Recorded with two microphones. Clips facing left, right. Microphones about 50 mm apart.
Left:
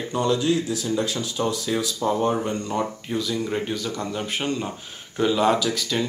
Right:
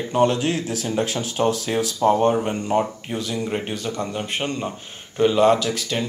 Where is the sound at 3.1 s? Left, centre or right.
Right.